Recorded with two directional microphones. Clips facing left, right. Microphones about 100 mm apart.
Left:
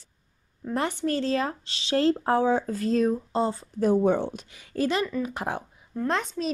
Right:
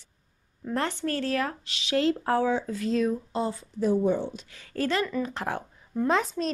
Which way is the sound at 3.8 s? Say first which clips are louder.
Left 2 dB; 60° left (ahead or behind).